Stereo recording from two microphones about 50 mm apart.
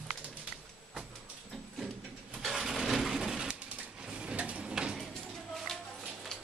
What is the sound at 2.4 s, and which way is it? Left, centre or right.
Vehicle, centre.